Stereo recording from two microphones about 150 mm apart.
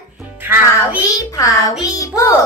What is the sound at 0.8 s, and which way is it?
Speech, 20° left (ahead or behind).